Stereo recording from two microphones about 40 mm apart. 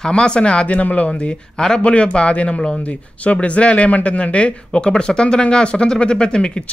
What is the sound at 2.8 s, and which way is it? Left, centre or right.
Speech, left.